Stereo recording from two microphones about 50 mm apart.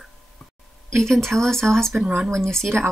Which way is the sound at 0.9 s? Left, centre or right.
Centre.